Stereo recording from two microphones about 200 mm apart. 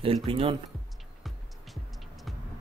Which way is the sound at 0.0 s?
25° right (ahead or behind).